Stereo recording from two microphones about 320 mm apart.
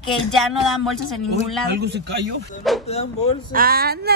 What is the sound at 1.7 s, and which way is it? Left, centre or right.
Speech, right.